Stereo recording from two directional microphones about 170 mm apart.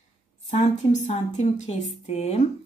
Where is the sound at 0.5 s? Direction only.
40° left (ahead or behind).